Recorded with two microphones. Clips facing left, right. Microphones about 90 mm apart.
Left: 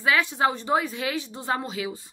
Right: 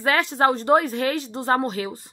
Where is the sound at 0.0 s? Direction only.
55° right (ahead or behind).